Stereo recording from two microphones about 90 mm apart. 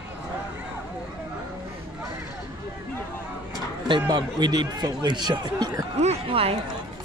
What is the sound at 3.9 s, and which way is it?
Speech, 50° right (ahead or behind).